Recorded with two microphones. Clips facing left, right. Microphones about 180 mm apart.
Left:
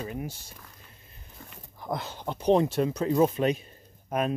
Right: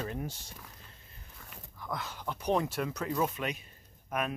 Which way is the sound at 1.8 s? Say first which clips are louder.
Left 6 dB; 30° left (ahead or behind).